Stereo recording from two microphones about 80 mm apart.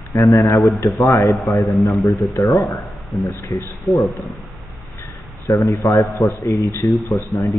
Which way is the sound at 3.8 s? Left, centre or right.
Centre.